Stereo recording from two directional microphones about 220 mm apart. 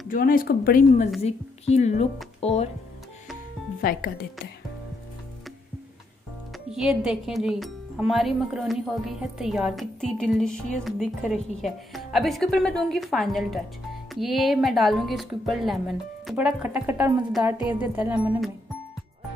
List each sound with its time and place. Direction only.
0.1 s speech: 40° left (ahead or behind)
1.2 s a woman's voice: 30° left (ahead or behind)
3.8 s speech: 40° left (ahead or behind)
6.5 s a woman's voice: centre (ahead or behind)